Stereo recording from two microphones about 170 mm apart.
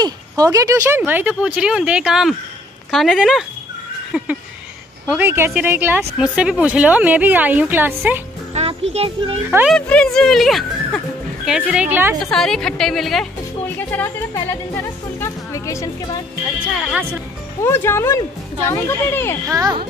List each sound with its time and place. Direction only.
0.0 s speech: 20° right (ahead or behind)
8.5 s music: 40° right (ahead or behind)
8.9 s a child's voice: 35° right (ahead or behind)
9.5 s speech: 10° right (ahead or behind)
9.8 s speech: 5° left (ahead or behind); by 12.2 s 10° right (ahead or behind)
12.3 s speech: 5° left (ahead or behind); by 16.2 s 20° left (ahead or behind)
17.6 s speech: 15° left (ahead or behind)
19.4 s a child's voice: 20° right (ahead or behind)